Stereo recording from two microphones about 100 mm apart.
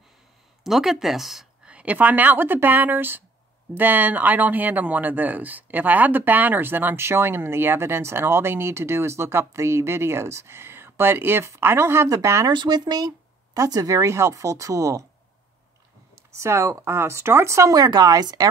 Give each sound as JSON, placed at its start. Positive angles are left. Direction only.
{"t": 0.7, "sound": "speech", "side_deg": -5}
{"t": 12.4, "sound": "speech", "side_deg": -45}
{"t": 16.2, "sound": "speech", "side_deg": -30}